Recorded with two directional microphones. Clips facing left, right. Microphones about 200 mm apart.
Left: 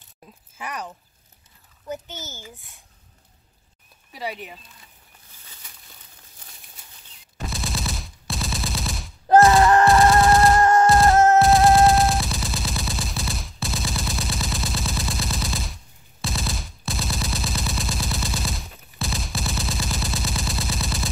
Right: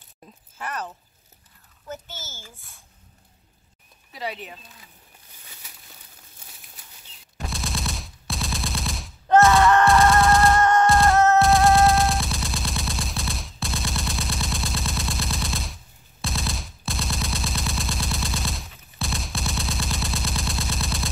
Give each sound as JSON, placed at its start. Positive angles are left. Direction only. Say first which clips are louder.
{"t": 0.6, "sound": "a child's voice", "louder": "right 1 dB", "side_deg": 15}
{"t": 1.9, "sound": "a child's voice", "louder": "left 4 dB", "side_deg": 15}
{"t": 4.1, "sound": "a child's voice", "louder": "left 1 dB", "side_deg": 10}
{"t": 7.3, "sound": "machine gun", "louder": "left 1 dB", "side_deg": 0}
{"t": 9.6, "sound": "a sound", "louder": "left 1 dB", "side_deg": 35}
{"t": 10.1, "sound": "machine gun", "louder": "left 2 dB", "side_deg": 0}
{"t": 10.6, "sound": "music", "louder": "left 2 dB", "side_deg": 30}
{"t": 10.9, "sound": "music", "louder": "left 2 dB", "side_deg": 0}
{"t": 11.3, "sound": "gunshot", "louder": "left 2 dB", "side_deg": 0}